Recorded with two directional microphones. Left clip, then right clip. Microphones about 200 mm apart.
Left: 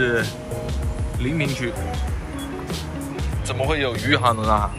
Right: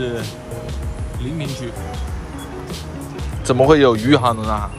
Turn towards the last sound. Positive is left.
turn(degrees=0)  # may be behind; listen again after turning